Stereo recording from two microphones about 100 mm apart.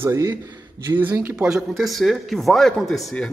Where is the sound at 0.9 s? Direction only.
20° right (ahead or behind).